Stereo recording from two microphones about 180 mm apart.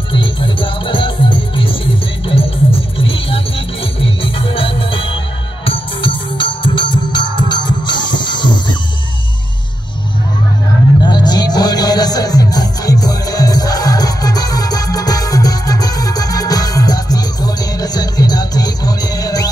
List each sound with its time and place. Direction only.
0.1 s music: 25° left (ahead or behind)
3.0 s music: 30° left (ahead or behind)
11.0 s music: 25° left (ahead or behind)